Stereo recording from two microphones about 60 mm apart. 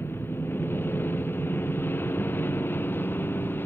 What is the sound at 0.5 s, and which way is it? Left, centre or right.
Vehicle, left.